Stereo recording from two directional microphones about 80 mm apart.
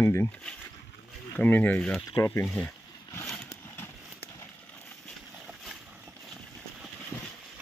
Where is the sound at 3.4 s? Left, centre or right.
Left.